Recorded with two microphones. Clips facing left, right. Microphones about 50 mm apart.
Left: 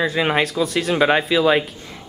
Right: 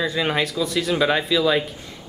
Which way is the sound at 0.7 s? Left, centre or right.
Centre.